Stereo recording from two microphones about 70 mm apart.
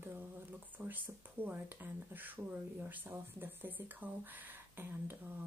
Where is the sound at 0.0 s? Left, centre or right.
Right.